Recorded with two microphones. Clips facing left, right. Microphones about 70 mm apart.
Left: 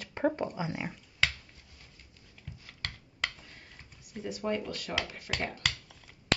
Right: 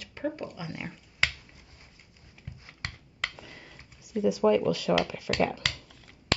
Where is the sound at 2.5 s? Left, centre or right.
Right.